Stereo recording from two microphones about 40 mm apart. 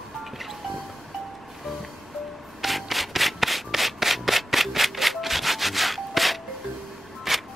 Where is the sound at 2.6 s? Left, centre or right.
Centre.